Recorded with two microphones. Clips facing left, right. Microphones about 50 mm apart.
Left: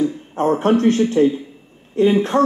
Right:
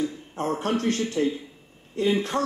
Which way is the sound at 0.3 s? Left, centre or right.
Left.